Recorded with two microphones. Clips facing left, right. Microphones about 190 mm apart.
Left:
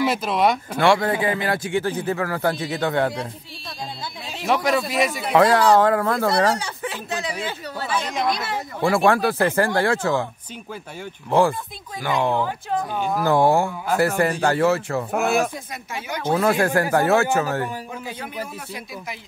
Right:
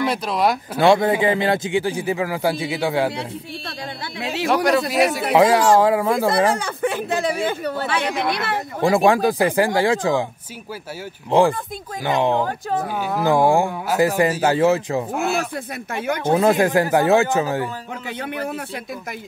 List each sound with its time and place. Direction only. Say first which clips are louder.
0.0 s speech: even; 5° left (ahead or behind)
0.7 s speech: right 5 dB; 20° right (ahead or behind)
3.2 s speech: right 3 dB; 70° right (ahead or behind)
5.3 s speech: even; 10° right (ahead or behind)
6.6 s speech: right 7 dB; 55° right (ahead or behind)
8.8 s speech: right 2 dB; 15° right (ahead or behind)
11.2 s speech: right 2 dB; 15° right (ahead or behind)
13.0 s speech: right 1 dB; 10° right (ahead or behind)
15.1 s speech: left 6 dB; 55° left (ahead or behind)
15.5 s speech: right 5 dB; 60° right (ahead or behind)
16.3 s speech: right 3 dB; 20° right (ahead or behind)
18.0 s speech: right 5 dB; 70° right (ahead or behind)